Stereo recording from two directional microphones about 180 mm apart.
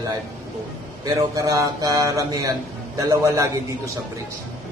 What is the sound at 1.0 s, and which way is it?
A man's voice, 20° right (ahead or behind).